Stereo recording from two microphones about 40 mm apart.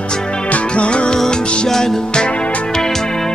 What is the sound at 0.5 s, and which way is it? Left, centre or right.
Music, left.